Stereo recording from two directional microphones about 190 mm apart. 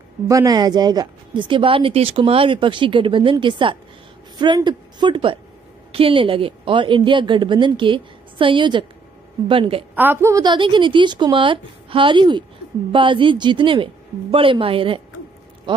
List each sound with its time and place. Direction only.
0.3 s speech: 20° right (ahead or behind)
9.9 s speech: 10° right (ahead or behind); by 15.0 s 30° right (ahead or behind)